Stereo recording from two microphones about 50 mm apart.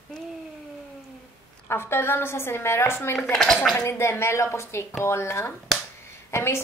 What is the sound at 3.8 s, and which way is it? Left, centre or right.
Speech, left.